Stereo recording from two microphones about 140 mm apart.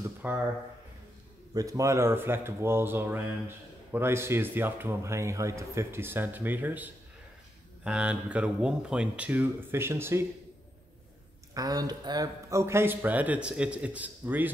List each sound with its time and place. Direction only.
0.0 s a sound: 15° right (ahead or behind)
1.5 s speech: 25° right (ahead or behind)
11.5 s speech: 25° right (ahead or behind)